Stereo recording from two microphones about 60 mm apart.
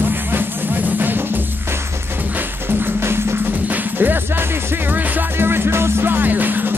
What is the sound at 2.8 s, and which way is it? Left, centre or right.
Music, right.